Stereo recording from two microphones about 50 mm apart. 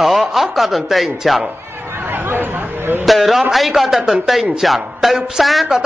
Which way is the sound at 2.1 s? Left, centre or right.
Right.